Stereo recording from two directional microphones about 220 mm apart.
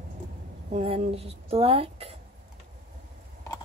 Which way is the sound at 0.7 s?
25° right (ahead or behind).